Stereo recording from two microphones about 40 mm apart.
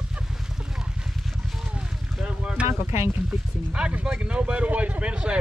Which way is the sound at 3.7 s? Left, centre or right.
Right.